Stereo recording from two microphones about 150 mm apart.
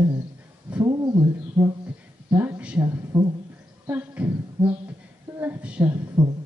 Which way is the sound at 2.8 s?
30° right (ahead or behind).